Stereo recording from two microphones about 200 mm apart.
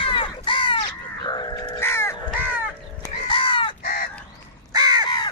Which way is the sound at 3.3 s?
25° left (ahead or behind).